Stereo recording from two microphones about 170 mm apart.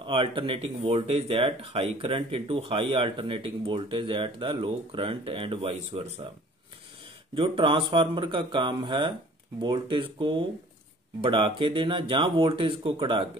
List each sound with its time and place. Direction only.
0.0 s speech: 30° right (ahead or behind)
7.3 s speech: 30° right (ahead or behind)